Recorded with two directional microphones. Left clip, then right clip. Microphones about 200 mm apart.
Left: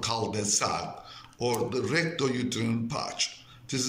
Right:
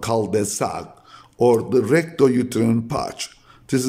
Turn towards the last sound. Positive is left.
turn(degrees=-65)  # may be behind; listen again after turning